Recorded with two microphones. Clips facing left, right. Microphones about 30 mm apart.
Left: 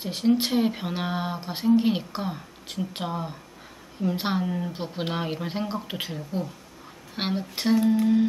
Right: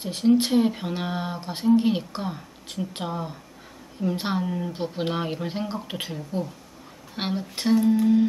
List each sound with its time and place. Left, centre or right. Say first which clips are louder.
0.0 s speech: right 2 dB; centre